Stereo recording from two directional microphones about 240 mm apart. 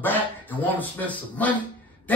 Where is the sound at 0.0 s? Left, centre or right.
Centre.